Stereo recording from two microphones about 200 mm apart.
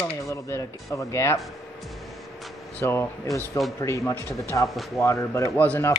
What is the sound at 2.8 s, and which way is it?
Speech, 15° left (ahead or behind).